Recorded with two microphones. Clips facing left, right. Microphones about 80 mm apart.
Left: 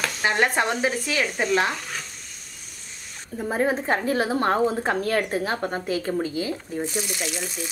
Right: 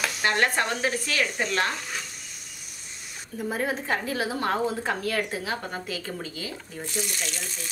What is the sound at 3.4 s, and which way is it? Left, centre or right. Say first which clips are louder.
A woman's voice: left 5 dB; left.